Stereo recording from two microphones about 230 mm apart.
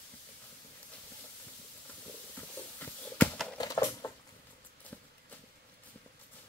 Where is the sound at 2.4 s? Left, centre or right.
Centre.